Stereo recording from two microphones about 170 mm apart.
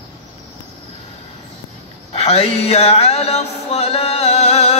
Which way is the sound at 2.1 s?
35° left (ahead or behind).